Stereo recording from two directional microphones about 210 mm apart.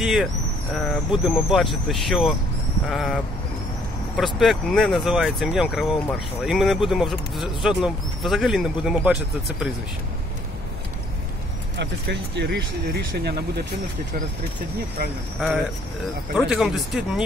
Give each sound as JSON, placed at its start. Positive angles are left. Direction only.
{"t": 0.0, "sound": "speech", "side_deg": 0}
{"t": 4.2, "sound": "speech", "side_deg": 0}
{"t": 11.8, "sound": "speech", "side_deg": -55}
{"t": 16.3, "sound": "speech", "side_deg": 0}